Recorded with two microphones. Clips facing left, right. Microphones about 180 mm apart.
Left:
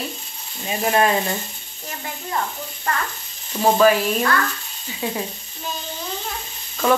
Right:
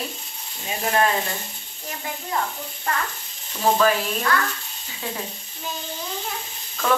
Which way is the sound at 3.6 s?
15° left (ahead or behind).